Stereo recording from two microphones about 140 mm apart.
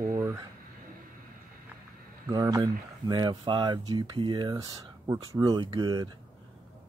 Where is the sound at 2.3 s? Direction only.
25° right (ahead or behind).